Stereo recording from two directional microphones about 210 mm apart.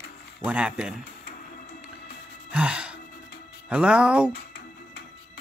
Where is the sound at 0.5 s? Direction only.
5° right (ahead or behind).